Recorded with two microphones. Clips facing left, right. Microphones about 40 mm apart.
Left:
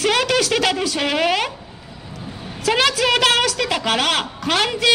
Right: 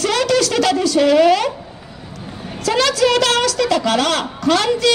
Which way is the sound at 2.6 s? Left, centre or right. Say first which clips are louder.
Right 2 dB; left.